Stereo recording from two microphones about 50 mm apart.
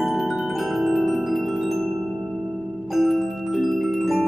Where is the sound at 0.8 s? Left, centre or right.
Centre.